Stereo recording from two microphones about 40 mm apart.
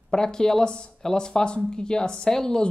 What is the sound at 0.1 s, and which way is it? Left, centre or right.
A woman's voice, centre.